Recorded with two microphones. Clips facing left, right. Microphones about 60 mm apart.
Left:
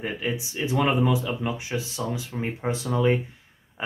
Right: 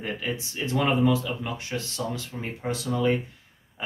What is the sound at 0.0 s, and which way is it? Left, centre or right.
Speech, centre.